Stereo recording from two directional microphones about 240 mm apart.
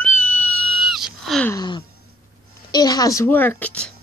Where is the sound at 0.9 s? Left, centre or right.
Centre.